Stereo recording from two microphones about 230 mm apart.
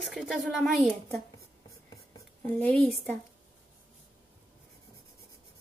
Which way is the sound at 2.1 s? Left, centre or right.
Centre.